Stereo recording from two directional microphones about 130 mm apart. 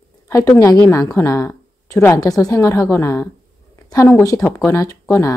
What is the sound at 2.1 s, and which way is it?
Speech, 30° left (ahead or behind).